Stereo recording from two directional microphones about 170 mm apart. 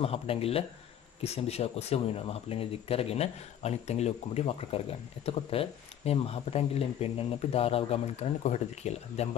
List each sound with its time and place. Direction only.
0.0 s speech: 35° left (ahead or behind)